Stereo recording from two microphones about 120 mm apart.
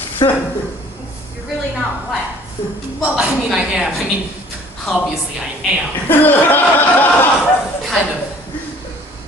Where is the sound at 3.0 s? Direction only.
5° right (ahead or behind).